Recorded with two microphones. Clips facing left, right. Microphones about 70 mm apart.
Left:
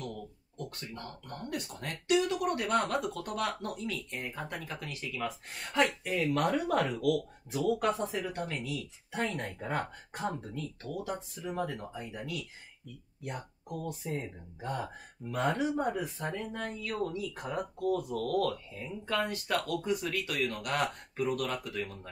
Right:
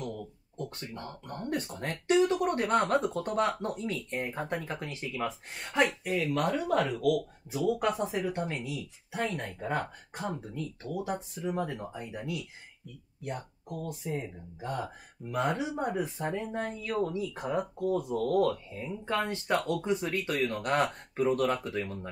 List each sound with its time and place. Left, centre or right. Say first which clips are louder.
0.6 s a sound: right 3 dB; right
1.2 s speech: right 4 dB; right
1.5 s speech: right 5 dB; right
6.0 s speech: even; centre
7.7 s speech: right 1 dB; right
9.1 s speech: right 1 dB; centre
10.5 s speech: right 2 dB; centre
13.7 s speech: right 1 dB; centre
15.9 s speech: right 3 dB; right